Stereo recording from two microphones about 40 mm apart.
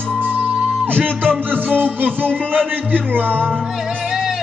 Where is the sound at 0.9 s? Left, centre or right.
Right.